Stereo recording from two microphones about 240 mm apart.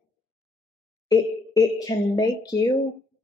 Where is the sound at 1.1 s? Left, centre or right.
Centre.